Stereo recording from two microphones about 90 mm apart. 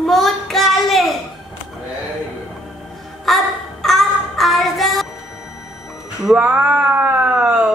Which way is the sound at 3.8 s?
Centre (ahead or behind).